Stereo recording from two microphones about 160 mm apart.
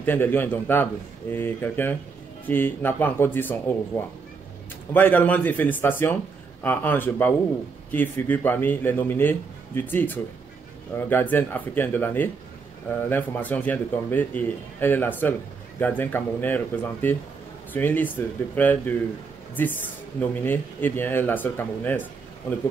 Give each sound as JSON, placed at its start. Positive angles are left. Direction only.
{"t": 0.0, "sound": "a man's voice", "side_deg": 10}